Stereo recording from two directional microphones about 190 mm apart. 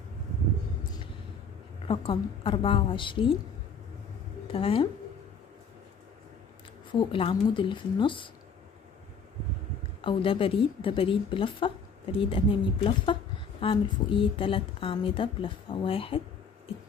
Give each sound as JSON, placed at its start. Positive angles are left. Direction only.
{"t": 1.9, "sound": "a woman's voice", "side_deg": 25}
{"t": 4.5, "sound": "a woman's voice", "side_deg": 30}
{"t": 6.9, "sound": "a woman's voice", "side_deg": 25}
{"t": 10.0, "sound": "a woman's voice", "side_deg": 25}